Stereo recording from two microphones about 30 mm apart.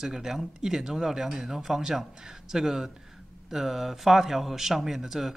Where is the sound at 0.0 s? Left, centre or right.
Centre.